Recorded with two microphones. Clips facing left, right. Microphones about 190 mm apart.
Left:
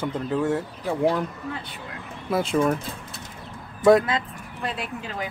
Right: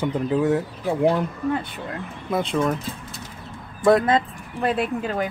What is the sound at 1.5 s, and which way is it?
Speech, 50° right (ahead or behind).